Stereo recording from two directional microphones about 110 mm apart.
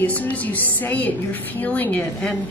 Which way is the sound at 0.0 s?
15° left (ahead or behind).